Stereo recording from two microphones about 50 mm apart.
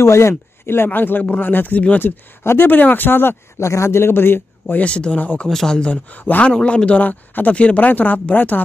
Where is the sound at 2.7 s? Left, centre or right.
Left.